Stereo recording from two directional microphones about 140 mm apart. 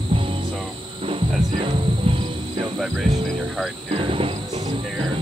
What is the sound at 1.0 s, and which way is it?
Insect, 45° right (ahead or behind).